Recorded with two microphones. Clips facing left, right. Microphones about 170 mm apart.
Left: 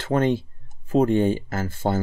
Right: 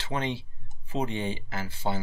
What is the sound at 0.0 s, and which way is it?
Speech, 50° left (ahead or behind).